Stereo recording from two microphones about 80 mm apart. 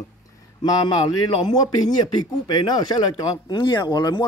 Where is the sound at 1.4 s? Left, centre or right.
Left.